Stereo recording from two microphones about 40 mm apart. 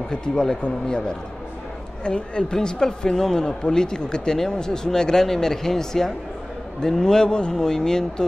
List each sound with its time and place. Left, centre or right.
0.1 s speech: centre